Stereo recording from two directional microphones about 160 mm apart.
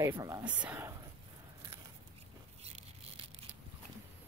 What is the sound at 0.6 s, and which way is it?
Speech, 10° right (ahead or behind).